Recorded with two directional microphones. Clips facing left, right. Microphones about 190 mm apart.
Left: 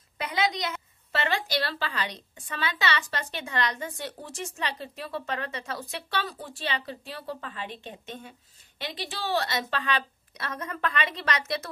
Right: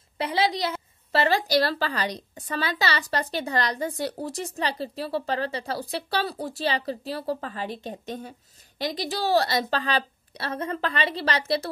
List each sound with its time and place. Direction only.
0.2 s a woman's voice: 30° right (ahead or behind)